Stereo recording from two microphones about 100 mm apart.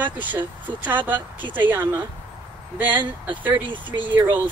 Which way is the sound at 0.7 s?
20° right (ahead or behind).